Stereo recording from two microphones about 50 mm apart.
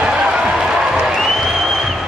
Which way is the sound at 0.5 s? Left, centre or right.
Centre.